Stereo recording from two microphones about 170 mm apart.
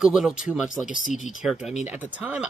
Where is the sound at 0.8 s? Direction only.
50° left (ahead or behind).